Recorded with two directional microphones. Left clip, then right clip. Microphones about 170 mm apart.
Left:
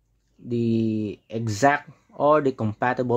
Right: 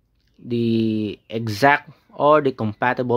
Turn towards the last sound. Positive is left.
turn(degrees=-15)  # may be behind; listen again after turning